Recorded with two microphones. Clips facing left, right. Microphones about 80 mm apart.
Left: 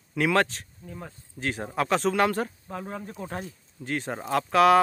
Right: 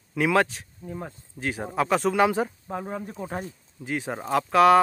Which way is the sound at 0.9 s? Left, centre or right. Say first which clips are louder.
Right 5 dB; centre.